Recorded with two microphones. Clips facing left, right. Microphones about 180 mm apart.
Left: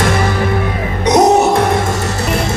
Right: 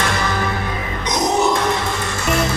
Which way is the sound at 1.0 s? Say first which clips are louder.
Left 8 dB; 65° left (ahead or behind).